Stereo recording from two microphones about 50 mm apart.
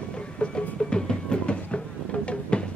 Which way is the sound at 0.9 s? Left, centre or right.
Centre.